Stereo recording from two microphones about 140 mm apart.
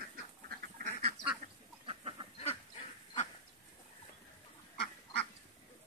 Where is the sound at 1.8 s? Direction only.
40° right (ahead or behind).